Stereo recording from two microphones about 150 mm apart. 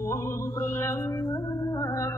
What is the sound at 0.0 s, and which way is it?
Music, 20° left (ahead or behind).